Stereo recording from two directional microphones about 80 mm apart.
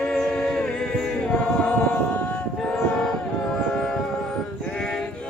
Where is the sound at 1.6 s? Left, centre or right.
Centre.